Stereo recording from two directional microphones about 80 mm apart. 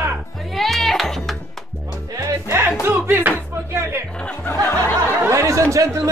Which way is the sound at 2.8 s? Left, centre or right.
Right.